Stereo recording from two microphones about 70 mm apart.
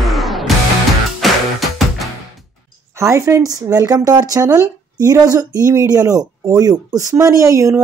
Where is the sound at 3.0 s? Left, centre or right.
Right.